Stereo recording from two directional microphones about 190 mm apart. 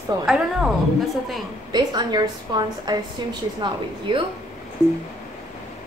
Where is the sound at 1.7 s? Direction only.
20° right (ahead or behind).